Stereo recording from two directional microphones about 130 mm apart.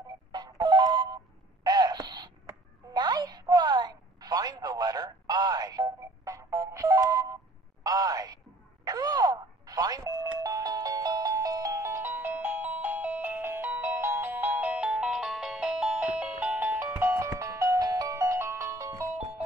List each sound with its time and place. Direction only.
0.3 s alarm clock: 35° right (ahead or behind)
2.9 s a sound: 30° right (ahead or behind)
8.8 s doorbell: 30° right (ahead or behind); by 16.9 s 15° right (ahead or behind)
17.0 s music: 20° right (ahead or behind)